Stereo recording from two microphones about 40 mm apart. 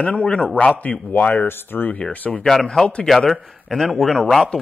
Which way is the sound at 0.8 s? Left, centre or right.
Left.